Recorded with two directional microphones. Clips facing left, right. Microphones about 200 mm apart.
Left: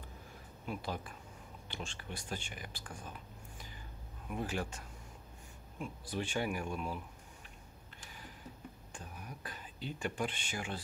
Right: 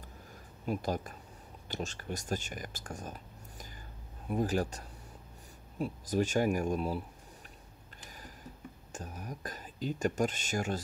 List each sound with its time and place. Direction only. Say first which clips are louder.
0.7 s speech: right 7 dB; 40° right (ahead or behind)
8.9 s speech: right 8 dB; 40° right (ahead or behind)